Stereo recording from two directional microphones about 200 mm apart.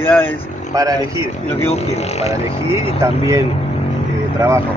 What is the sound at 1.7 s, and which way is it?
Speech, 30° left (ahead or behind).